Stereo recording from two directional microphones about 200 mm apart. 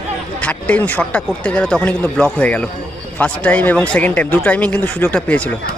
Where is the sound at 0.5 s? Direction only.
5° left (ahead or behind).